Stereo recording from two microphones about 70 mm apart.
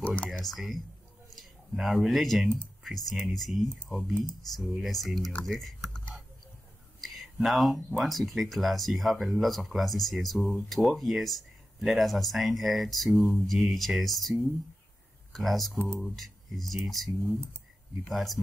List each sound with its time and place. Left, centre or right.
0.0 s speech: left
0.3 s speech: centre
7.0 s whispering: centre
7.4 s speech: centre